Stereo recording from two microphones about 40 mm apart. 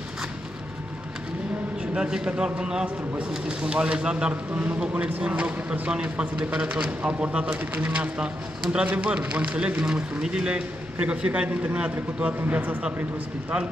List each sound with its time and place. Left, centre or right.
1.8 s a man's voice: centre
4.3 s a man's voice: right
7.7 s a man's voice: right
12.4 s a man's voice: right